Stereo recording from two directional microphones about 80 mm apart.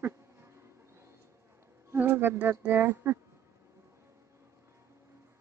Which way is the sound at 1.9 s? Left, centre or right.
Right.